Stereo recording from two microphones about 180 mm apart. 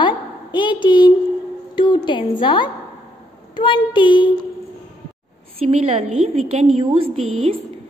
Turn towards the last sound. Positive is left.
turn(degrees=-35)  # may be behind; listen again after turning